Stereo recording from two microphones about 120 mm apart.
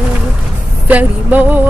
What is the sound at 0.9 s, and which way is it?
Vehicle, 15° right (ahead or behind).